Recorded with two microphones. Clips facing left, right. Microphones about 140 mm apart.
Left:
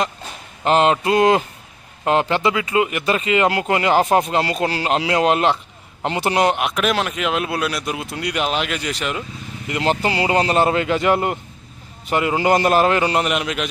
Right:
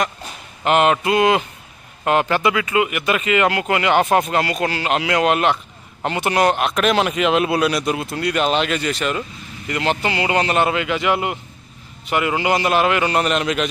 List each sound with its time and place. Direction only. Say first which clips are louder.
0.7 s a man's voice: even; 30° left (ahead or behind); by 8.1 s centre (ahead or behind)
8.1 s speech: right 2 dB; 15° left (ahead or behind)
9.8 s a man's voice: left 2 dB; 35° left (ahead or behind)
12.1 s speech: left 1 dB; 25° left (ahead or behind)
12.4 s a man's voice: left 4 dB; 40° left (ahead or behind)
13.2 s speech: right 2 dB; 10° left (ahead or behind)